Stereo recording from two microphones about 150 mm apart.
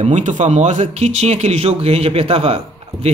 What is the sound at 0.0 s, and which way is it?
Speech, 55° right (ahead or behind).